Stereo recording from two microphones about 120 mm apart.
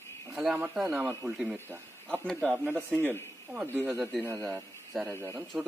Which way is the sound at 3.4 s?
15° right (ahead or behind).